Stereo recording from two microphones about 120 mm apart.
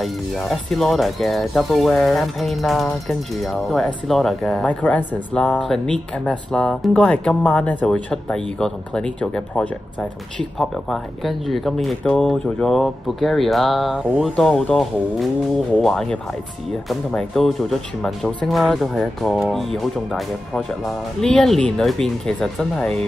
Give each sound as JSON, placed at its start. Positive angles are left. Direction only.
{"t": 0.0, "sound": "speech", "side_deg": 0}